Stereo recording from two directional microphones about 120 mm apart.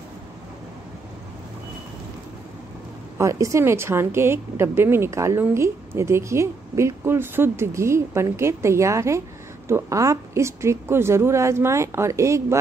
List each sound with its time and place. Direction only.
3.2 s a woman's voice: 25° right (ahead or behind)